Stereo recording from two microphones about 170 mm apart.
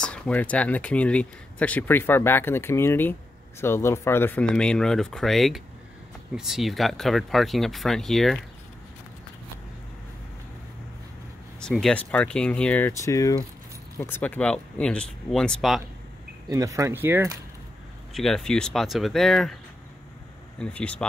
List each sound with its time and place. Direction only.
0.0 s speech: 5° left (ahead or behind)
11.6 s speech: 5° left (ahead or behind)
16.4 s speech: 20° right (ahead or behind)
18.1 s speech: centre (ahead or behind)
20.5 s speech: 5° left (ahead or behind)